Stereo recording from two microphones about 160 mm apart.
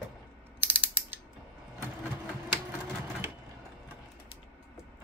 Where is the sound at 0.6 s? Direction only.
10° right (ahead or behind).